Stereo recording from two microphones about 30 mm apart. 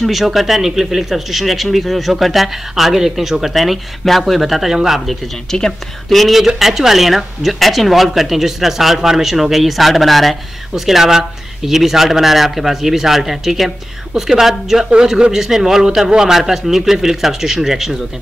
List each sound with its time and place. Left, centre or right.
0.0 s speech: centre
3.5 s speech: centre
5.5 s speech: centre
6.0 s speech: centre
6.3 s speech: centre
10.7 s speech: centre
15.0 s speech: right